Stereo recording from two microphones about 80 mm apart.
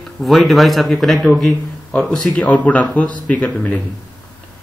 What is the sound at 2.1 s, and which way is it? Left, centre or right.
Speech, centre.